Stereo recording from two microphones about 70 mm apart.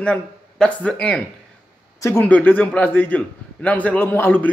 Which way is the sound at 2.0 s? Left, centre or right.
Left.